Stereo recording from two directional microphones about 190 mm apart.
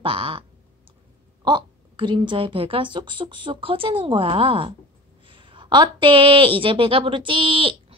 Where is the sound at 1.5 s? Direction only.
25° right (ahead or behind).